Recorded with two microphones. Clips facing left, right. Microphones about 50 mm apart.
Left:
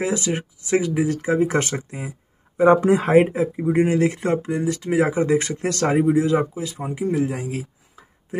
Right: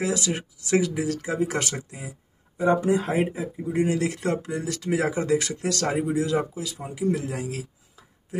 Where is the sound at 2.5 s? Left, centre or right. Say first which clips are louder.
Left 6 dB; left; by 7.6 s centre.